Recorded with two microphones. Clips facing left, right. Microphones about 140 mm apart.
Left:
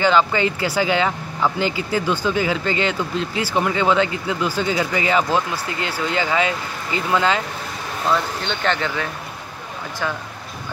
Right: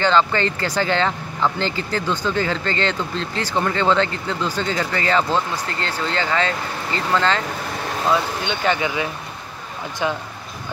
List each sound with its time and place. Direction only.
0.0 s speech: 10° left (ahead or behind)
8.1 s speech: 10° right (ahead or behind)